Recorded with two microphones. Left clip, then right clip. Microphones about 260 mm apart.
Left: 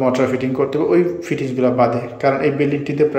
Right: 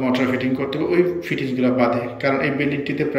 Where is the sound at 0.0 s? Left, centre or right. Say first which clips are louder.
Left 4 dB; centre.